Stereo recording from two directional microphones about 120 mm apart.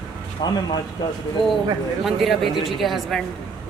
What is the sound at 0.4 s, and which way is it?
Speech, 40° left (ahead or behind).